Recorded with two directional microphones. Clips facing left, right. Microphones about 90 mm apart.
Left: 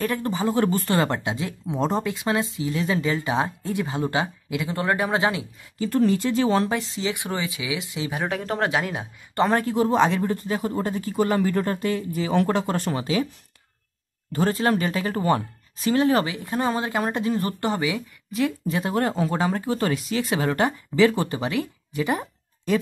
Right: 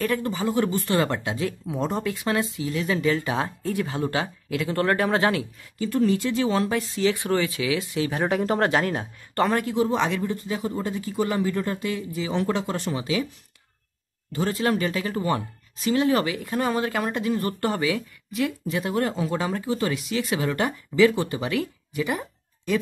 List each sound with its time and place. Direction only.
0.3 s speech: 25° left (ahead or behind)
0.6 s speech: 40° left (ahead or behind)
0.9 s speech: 25° left (ahead or behind)
5.8 s speech: 35° left (ahead or behind); by 8.2 s 20° left (ahead or behind)
8.2 s speech: centre (ahead or behind)
9.4 s speech: 30° left (ahead or behind)
14.3 s speech: 40° left (ahead or behind)